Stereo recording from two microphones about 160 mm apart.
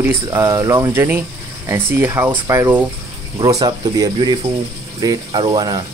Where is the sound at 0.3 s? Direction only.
20° right (ahead or behind).